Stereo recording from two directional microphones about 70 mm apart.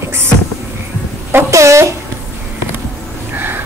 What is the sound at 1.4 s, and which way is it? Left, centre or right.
Speech, right.